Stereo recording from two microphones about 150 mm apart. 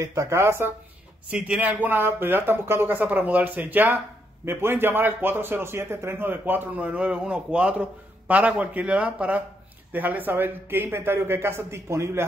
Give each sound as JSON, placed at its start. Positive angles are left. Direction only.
{"t": 0.0, "sound": "a man's voice", "side_deg": -20}